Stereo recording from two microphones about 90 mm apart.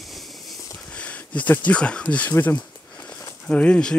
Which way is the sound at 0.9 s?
15° left (ahead or behind).